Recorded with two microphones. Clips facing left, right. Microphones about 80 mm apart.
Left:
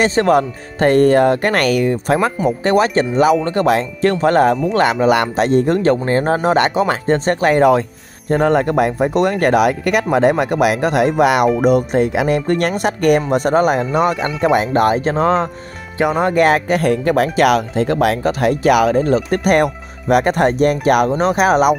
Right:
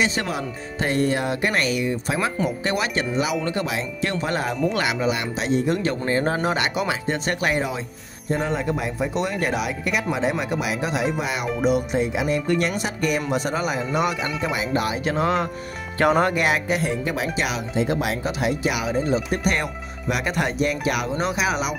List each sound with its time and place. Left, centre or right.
0.0 s speech: left
5.1 s speech: left
8.3 s speech: left
11.6 s speech: left
16.0 s speech: centre
16.3 s speech: left